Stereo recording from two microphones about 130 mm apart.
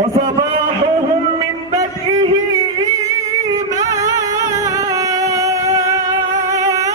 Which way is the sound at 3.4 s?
25° right (ahead or behind).